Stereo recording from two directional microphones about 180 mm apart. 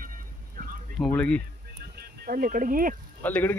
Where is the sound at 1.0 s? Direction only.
5° left (ahead or behind).